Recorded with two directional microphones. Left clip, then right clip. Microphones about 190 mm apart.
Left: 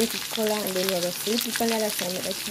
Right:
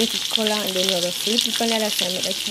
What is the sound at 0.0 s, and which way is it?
Frying, 10° right (ahead or behind).